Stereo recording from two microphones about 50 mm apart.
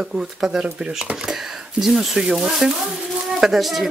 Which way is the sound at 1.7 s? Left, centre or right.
Centre.